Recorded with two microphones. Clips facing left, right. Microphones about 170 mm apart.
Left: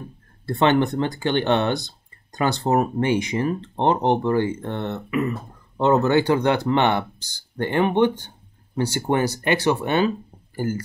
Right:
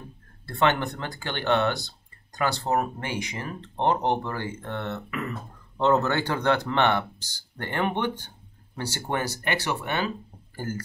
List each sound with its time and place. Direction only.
0.6 s speech: 20° left (ahead or behind)